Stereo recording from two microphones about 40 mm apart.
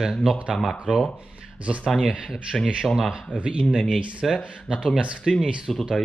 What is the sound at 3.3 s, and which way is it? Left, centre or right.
Speech, left.